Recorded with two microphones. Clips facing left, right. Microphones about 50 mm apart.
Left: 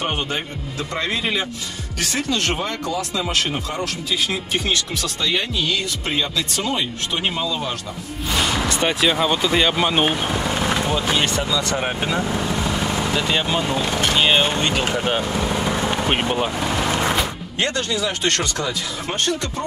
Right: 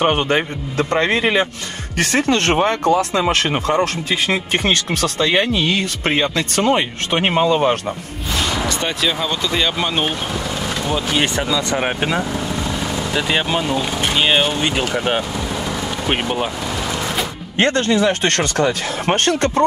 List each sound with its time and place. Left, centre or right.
0.0 s speech: right
8.4 s speech: centre
11.7 s speech: right
12.3 s vehicle: centre
13.1 s speech: centre
15.3 s vehicle: centre
16.1 s speech: centre
16.6 s vehicle: centre
17.6 s speech: right